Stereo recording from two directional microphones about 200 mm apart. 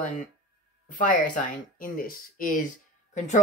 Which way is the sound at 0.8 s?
40° left (ahead or behind).